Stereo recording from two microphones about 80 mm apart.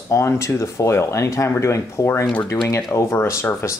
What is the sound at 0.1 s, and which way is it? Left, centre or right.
Speech, left.